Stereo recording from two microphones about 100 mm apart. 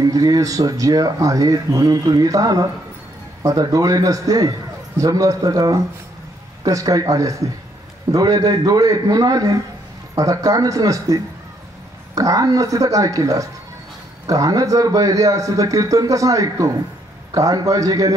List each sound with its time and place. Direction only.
0.0 s speech: 40° right (ahead or behind)